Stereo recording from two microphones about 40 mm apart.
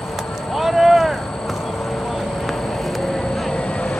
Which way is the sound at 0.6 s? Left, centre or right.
Centre.